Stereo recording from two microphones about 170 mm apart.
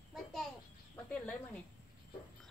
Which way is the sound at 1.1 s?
10° left (ahead or behind).